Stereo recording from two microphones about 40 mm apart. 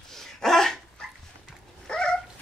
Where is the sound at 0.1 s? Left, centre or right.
Centre.